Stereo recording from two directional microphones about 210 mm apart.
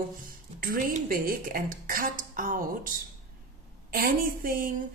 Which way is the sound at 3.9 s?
45° right (ahead or behind).